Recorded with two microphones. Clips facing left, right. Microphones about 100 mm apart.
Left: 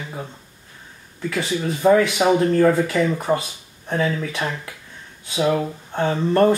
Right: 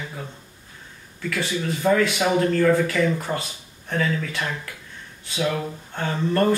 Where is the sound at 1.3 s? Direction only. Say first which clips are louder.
Left 2 dB; 25° left (ahead or behind).